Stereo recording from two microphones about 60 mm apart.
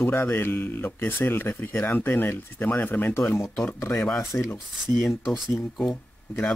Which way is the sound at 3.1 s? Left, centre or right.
Left.